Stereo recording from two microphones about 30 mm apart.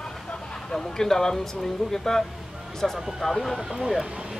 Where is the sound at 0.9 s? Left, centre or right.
Centre.